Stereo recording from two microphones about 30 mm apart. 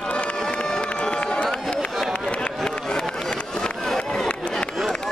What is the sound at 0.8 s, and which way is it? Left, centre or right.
Run, left.